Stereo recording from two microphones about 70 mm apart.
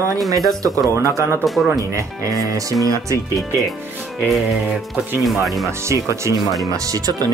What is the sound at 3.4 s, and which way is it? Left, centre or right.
Speech, centre.